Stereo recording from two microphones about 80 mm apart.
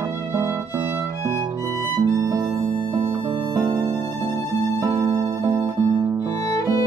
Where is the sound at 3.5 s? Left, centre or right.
Right.